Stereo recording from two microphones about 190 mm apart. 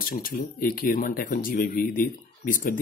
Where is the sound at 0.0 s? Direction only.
50° left (ahead or behind).